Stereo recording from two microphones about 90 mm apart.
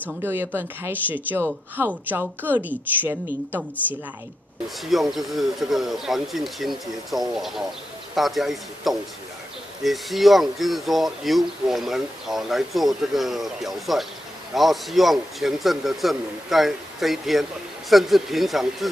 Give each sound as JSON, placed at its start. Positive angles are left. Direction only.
{"t": 0.2, "sound": "speech", "side_deg": -25}
{"t": 4.8, "sound": "speech", "side_deg": 0}